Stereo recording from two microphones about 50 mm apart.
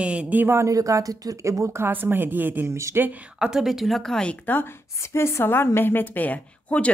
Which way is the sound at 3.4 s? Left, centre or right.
Centre.